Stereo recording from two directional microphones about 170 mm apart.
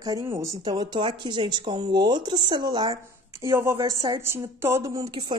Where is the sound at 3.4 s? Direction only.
15° right (ahead or behind).